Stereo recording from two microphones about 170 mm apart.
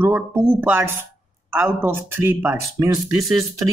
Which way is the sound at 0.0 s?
10° right (ahead or behind).